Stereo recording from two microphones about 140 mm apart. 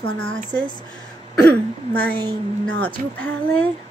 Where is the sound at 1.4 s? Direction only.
10° left (ahead or behind).